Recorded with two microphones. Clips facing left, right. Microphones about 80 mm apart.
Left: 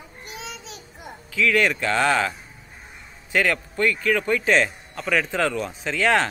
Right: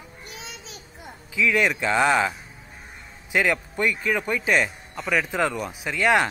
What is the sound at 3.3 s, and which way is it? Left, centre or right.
A man's voice, centre.